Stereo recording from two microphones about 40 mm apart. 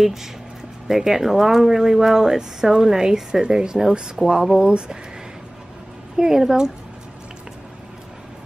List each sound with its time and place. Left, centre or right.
0.0 s speech: centre
4.6 s speech: right
6.1 s speech: centre